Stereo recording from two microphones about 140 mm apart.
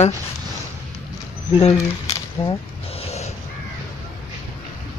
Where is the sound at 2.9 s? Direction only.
50° left (ahead or behind).